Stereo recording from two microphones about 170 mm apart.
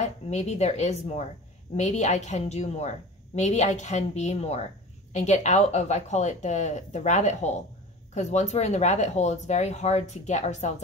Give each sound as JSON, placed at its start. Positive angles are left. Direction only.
{"t": 0.0, "sound": "speech", "side_deg": 40}